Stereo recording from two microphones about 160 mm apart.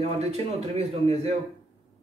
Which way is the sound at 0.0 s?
40° right (ahead or behind).